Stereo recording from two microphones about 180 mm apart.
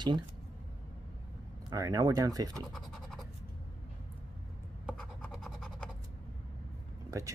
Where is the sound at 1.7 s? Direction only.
20° right (ahead or behind).